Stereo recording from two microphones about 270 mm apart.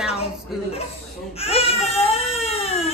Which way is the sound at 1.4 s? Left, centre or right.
Left.